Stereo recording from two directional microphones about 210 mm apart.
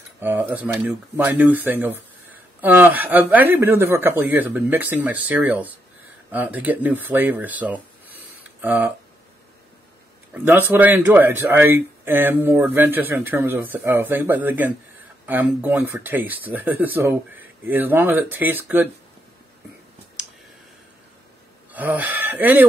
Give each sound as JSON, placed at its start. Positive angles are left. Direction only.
{"t": 0.2, "sound": "speech", "side_deg": -10}
{"t": 8.5, "sound": "tick-tock", "side_deg": -10}
{"t": 10.3, "sound": "speech", "side_deg": -10}
{"t": 21.7, "sound": "speech", "side_deg": -10}